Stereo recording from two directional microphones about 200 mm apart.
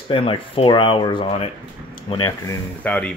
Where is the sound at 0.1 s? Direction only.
25° left (ahead or behind).